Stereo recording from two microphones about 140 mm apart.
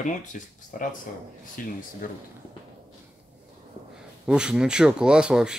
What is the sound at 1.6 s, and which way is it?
Speech, 80° left.